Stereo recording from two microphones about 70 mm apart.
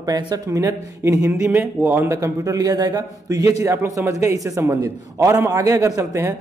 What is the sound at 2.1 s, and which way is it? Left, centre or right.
A man's voice, right.